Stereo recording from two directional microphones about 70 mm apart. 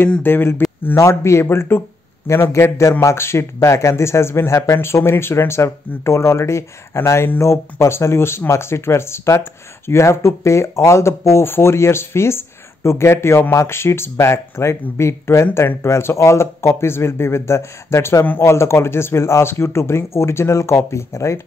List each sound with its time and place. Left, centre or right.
0.2 s speech: left
0.9 s speech: left